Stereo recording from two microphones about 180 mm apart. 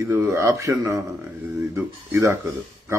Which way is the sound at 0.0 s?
15° right (ahead or behind).